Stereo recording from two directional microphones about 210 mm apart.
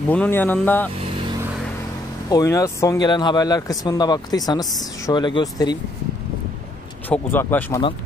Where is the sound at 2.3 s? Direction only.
15° left (ahead or behind).